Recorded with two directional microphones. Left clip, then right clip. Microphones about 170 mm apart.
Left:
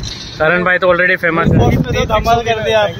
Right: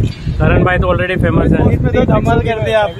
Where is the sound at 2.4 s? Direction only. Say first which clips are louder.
Left 1 dB; 20° right (ahead or behind).